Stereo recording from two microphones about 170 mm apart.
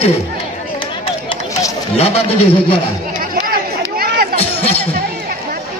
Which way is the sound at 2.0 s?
35° left (ahead or behind).